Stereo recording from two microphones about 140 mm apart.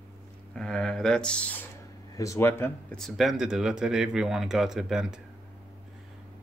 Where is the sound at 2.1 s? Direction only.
25° left (ahead or behind).